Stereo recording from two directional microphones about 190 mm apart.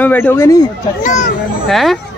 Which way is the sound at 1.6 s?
Centre (ahead or behind).